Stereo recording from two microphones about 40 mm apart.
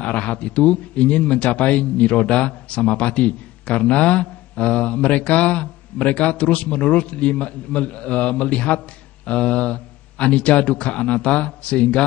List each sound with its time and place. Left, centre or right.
0.0 s a man's voice: left